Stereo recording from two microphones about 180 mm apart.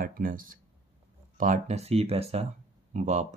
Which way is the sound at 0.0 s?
50° right (ahead or behind).